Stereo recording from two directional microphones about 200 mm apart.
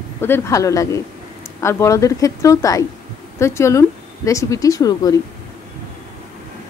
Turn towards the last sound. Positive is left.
turn(degrees=20)  # may be behind; listen again after turning